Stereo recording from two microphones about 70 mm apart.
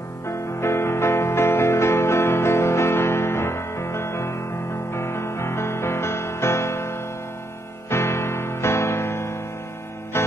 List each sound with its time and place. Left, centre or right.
0.6 s music: left